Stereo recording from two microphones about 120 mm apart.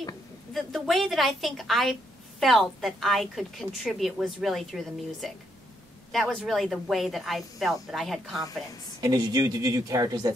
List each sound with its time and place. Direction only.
0.5 s a woman's voice: centre (ahead or behind)
9.0 s speech: 30° right (ahead or behind)